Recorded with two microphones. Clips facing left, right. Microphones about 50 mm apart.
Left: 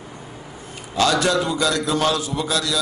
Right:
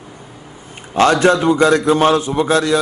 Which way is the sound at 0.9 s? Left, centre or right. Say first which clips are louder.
Right 6 dB; right.